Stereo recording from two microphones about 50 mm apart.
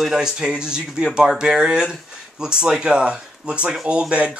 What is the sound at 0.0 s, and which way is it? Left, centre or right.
Speech, centre.